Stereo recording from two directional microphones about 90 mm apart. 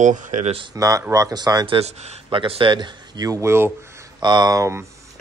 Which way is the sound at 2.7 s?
55° right (ahead or behind).